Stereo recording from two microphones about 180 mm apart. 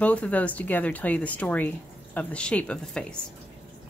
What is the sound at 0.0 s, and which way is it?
Speech, 10° left (ahead or behind).